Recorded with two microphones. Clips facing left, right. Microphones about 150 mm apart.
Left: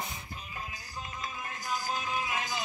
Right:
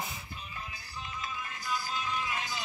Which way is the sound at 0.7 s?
45° left (ahead or behind).